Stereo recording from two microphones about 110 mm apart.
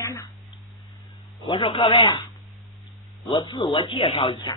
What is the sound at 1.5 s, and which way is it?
Speech, 50° left (ahead or behind).